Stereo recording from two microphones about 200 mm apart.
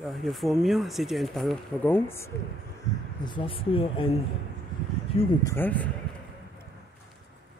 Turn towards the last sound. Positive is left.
turn(degrees=10)  # may be behind; listen again after turning